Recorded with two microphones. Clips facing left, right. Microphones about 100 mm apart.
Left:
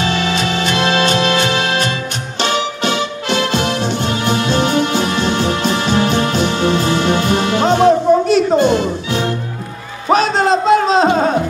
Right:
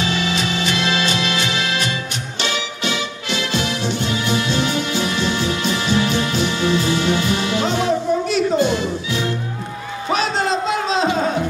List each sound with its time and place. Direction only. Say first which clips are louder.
0.0 s music: left 4 dB; 50° left (ahead or behind)